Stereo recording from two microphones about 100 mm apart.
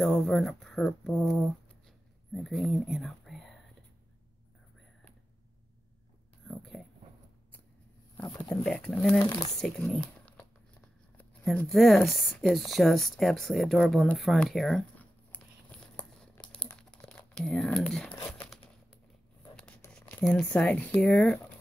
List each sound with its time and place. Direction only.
0.0 s speech: 5° left (ahead or behind)
1.9 s whispering: 5° left (ahead or behind)
6.4 s a sound: centre (ahead or behind)
8.5 s speech: 10° left (ahead or behind)
9.2 s speech: 40° left (ahead or behind)
9.6 s speech: 5° left (ahead or behind)
11.7 s speech: centre (ahead or behind)
15.0 s a sound: 15° left (ahead or behind)
16.4 s crumpling: 25° left (ahead or behind)
17.1 s crumpling: 5° left (ahead or behind)
17.6 s speech: 10° left (ahead or behind)
19.5 s shuffling cards: 10° left (ahead or behind)
19.9 s a sound: 10° left (ahead or behind)
20.3 s speech: 10° left (ahead or behind)